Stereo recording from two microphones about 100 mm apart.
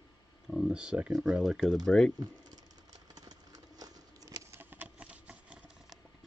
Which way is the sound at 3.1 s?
40° right (ahead or behind).